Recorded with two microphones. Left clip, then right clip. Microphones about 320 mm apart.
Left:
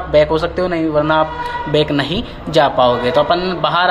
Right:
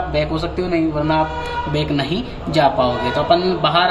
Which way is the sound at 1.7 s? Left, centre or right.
Centre.